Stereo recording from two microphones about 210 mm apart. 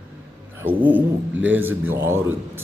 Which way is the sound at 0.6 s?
10° right (ahead or behind).